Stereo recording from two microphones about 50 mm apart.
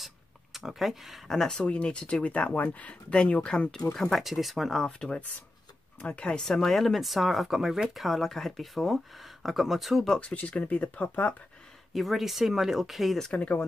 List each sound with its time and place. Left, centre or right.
0.0 s speech: centre
1.6 s speech: left
3.7 s speech: centre
4.2 s speech: centre
6.0 s speech: left
6.4 s speech: centre
10.2 s speech: left
11.9 s speech: centre
13.3 s speech: left